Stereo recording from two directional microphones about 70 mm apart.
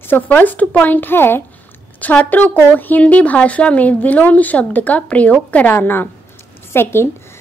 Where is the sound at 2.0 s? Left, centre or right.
Left.